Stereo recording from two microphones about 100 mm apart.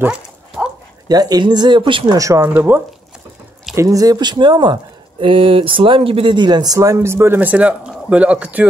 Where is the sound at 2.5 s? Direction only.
20° right (ahead or behind).